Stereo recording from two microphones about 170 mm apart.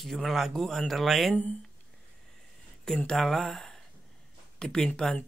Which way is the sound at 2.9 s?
5° left (ahead or behind).